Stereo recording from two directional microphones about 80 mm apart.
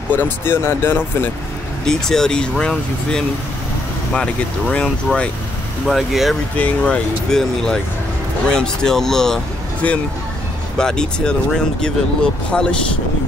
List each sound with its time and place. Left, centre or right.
0.1 s speech: left
1.9 s speech: centre
5.9 s speech: centre
6.6 s speech: centre
10.8 s speech: centre